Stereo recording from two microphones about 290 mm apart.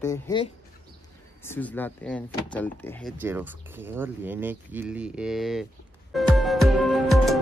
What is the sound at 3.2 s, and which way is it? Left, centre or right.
Speech, centre.